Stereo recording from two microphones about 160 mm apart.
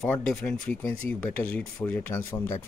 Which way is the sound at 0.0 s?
5° left (ahead or behind).